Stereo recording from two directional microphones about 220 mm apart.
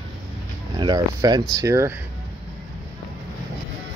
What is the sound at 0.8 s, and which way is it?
Speech, 20° right (ahead or behind).